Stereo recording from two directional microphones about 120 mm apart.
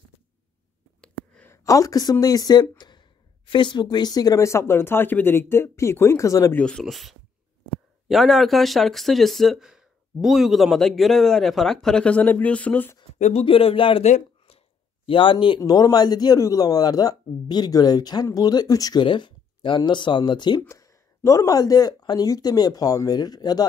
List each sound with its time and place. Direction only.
1.0 s a sound: 10° left (ahead or behind)
1.5 s a man's voice: 25° left (ahead or behind)
6.5 s speech: 5° left (ahead or behind)
13.2 s speech: 60° left (ahead or behind)
14.0 s a sound: 75° left (ahead or behind)
15.0 s a man's voice: 45° left (ahead or behind); by 19.0 s 30° left (ahead or behind)
19.0 s speech: 45° left (ahead or behind)
20.6 s a man's voice: 25° left (ahead or behind)